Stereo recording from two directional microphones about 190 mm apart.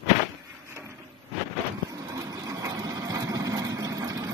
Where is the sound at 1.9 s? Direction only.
20° right (ahead or behind).